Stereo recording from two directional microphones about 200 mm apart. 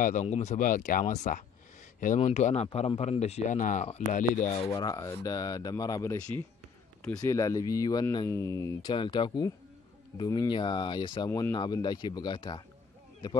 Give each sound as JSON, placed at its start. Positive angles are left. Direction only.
{"t": 0.0, "sound": "a man's voice", "side_deg": 35}
{"t": 4.6, "sound": "speech", "side_deg": 20}